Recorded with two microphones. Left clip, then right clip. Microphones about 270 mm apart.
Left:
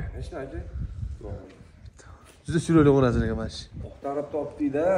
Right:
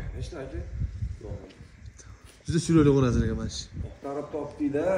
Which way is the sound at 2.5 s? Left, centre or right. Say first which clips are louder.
Left 2 dB; centre.